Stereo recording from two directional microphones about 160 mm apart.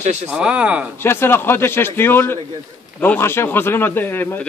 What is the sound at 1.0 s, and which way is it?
Speech, 15° left (ahead or behind).